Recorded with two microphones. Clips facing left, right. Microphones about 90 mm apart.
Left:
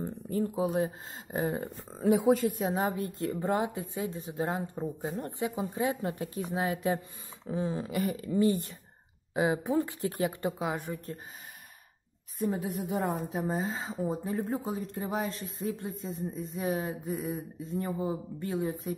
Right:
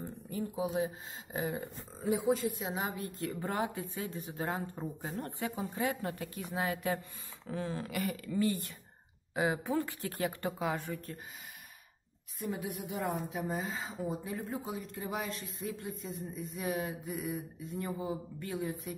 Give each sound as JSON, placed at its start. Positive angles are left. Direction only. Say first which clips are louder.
{"t": 0.3, "sound": "speech", "louder": "left 5 dB", "side_deg": 40}
{"t": 2.5, "sound": "a woman's voice", "louder": "left 7 dB", "side_deg": 40}
{"t": 12.4, "sound": "speech", "louder": "left 6 dB", "side_deg": 35}